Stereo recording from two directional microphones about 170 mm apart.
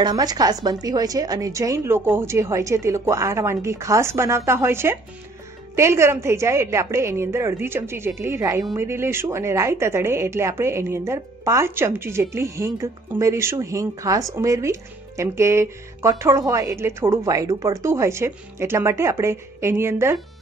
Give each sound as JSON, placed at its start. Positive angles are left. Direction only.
{"t": 0.0, "sound": "speech", "side_deg": -25}